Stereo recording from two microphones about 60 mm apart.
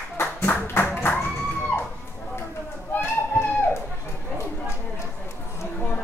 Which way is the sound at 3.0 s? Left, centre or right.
Left.